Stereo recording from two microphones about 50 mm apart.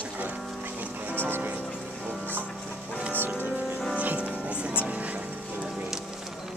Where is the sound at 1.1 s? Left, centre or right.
Right.